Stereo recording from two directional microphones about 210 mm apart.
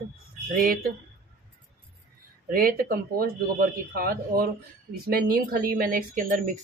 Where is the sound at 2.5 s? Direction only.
40° right (ahead or behind).